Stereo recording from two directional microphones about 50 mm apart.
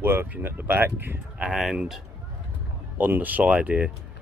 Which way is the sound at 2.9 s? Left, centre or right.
Right.